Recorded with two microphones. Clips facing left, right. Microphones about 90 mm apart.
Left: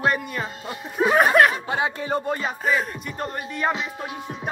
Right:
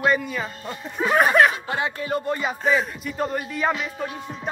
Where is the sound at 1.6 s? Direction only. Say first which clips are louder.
Left 1 dB; 25° left (ahead or behind).